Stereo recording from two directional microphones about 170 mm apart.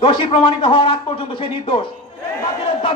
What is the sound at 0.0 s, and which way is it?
A man's voice, 30° left (ahead or behind).